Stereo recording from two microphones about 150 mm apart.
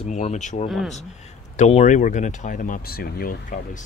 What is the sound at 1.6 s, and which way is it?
Speech, 45° left (ahead or behind).